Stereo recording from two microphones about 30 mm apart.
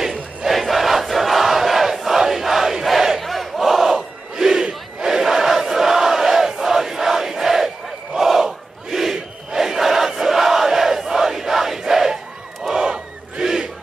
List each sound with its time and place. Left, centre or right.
0.5 s crowd: centre
2.8 s battle cry: centre
3.2 s crowd: centre
12.8 s battle cry: right